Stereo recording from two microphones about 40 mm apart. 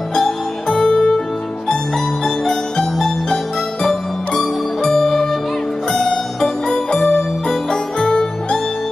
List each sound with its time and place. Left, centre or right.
0.1 s music: centre
2.2 s music: centre